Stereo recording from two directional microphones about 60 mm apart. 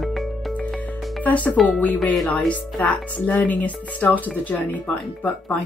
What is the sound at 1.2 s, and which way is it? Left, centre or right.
Speech, left.